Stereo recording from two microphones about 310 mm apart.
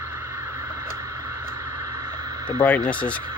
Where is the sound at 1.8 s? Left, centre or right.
Centre.